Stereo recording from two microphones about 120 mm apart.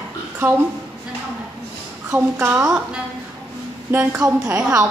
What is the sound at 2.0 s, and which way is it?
Speech, 15° right (ahead or behind).